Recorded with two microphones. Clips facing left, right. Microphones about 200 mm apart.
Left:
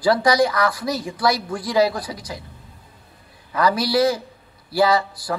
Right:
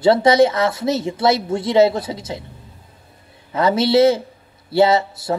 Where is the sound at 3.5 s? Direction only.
25° right (ahead or behind).